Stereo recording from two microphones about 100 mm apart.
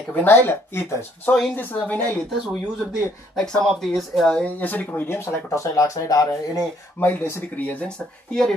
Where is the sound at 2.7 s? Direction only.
5° right (ahead or behind).